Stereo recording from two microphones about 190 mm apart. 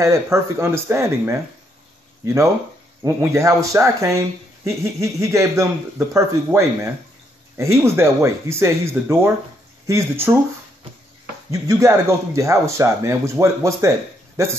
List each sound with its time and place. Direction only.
0.0 s speech: 15° right (ahead or behind)
3.0 s speech: 15° right (ahead or behind)
11.5 s speech: 15° right (ahead or behind)